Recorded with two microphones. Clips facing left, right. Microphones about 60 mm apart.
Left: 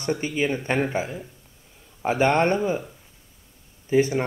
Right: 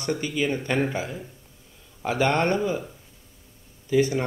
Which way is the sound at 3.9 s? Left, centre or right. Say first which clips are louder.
Left 1 dB; left.